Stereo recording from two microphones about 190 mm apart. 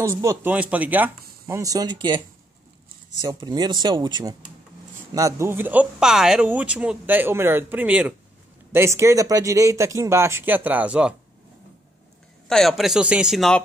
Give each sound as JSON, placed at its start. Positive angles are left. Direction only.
{"t": 0.0, "sound": "speech", "side_deg": -15}
{"t": 12.4, "sound": "speech", "side_deg": 0}